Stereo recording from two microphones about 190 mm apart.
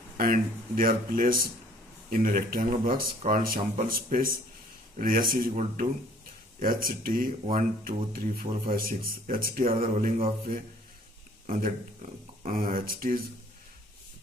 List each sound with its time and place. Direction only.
0.2 s speech: 45° right (ahead or behind)
9.8 s mantra: 35° right (ahead or behind)
11.4 s speech: 45° right (ahead or behind)